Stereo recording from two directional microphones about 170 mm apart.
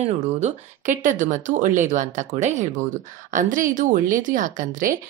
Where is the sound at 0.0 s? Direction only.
40° right (ahead or behind).